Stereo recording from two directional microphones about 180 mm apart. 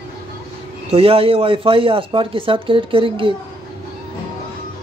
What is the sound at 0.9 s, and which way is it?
Speech, 30° right (ahead or behind).